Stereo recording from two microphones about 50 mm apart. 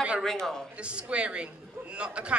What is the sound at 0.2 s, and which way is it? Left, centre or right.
Speech, centre.